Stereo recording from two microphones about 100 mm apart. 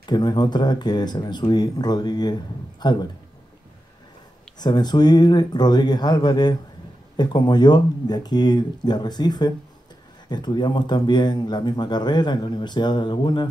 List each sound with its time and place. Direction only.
0.0 s speech: 45° left (ahead or behind)
4.6 s speech: 45° left (ahead or behind)